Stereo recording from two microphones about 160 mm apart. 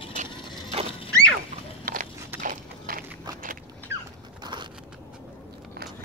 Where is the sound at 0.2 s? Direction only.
40° right (ahead or behind).